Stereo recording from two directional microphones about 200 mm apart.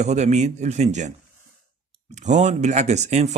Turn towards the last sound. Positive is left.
turn(degrees=-35)  # may be behind; listen again after turning